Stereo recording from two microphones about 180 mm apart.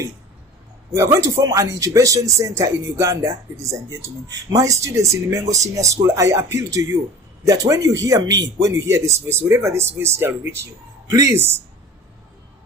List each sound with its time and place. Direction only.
0.9 s speech: 20° right (ahead or behind)